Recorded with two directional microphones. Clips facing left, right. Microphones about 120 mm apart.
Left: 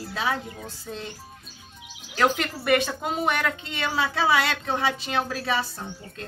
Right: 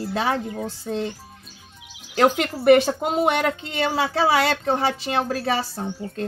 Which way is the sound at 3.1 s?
25° right (ahead or behind).